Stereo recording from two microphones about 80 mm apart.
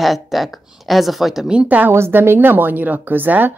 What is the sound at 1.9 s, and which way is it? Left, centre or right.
A woman's voice, right.